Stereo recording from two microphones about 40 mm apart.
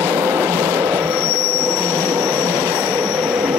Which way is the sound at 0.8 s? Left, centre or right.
Right.